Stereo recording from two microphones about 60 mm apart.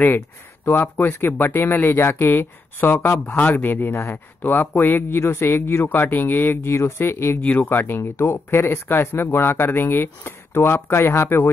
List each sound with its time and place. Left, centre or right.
0.7 s speech: left
7.4 s speech: left